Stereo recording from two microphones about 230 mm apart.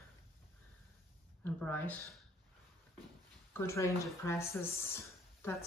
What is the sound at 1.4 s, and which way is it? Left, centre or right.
Speech, centre.